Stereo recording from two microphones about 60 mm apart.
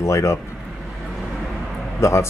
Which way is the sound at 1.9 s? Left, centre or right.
Left.